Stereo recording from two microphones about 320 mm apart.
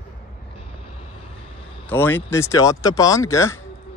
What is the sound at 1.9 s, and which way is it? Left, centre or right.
Speech, centre.